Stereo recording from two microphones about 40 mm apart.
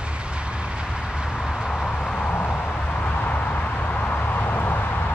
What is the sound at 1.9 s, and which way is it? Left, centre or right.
Vehicle, left.